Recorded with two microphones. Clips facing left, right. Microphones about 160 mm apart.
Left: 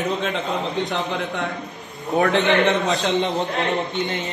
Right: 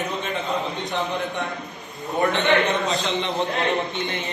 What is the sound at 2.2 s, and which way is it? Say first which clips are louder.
Speech: left 2 dB; 75° left (ahead or behind).